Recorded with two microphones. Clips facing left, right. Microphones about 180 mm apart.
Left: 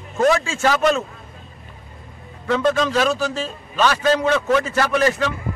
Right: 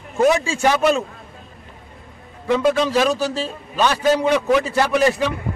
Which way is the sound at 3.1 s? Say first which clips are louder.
Right 1 dB; 35° right (ahead or behind).